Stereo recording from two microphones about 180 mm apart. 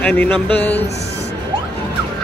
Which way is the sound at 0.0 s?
5° left (ahead or behind).